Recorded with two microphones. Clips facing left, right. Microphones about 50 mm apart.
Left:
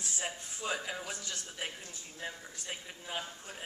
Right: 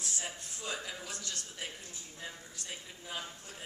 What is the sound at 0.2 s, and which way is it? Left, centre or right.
A woman's voice, left.